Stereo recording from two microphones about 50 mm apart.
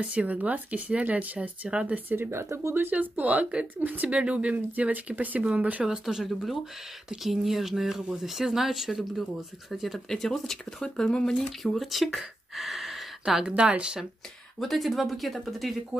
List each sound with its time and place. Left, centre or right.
0.0 s speech: right
2.0 s speech: right
2.9 s speech: right
5.9 s speech: centre
9.9 s speech: centre
13.6 s speech: right
14.6 s speech: centre
15.9 s speech: centre